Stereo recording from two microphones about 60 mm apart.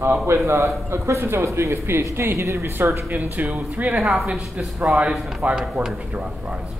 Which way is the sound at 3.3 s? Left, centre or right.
Right.